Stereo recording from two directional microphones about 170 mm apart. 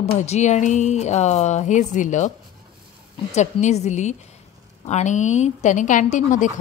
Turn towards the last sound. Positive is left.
turn(degrees=45)  # may be behind; listen again after turning